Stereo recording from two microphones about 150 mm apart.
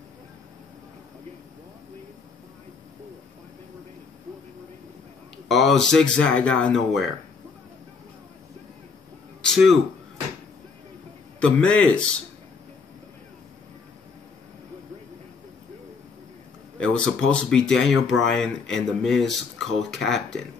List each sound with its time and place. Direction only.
5.5 s speech: centre (ahead or behind)
9.4 s a sound: centre (ahead or behind)
11.4 s a man's voice: 5° left (ahead or behind)
16.8 s speech: 5° left (ahead or behind)